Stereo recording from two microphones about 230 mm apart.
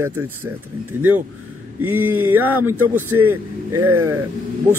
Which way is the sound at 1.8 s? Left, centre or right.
Centre.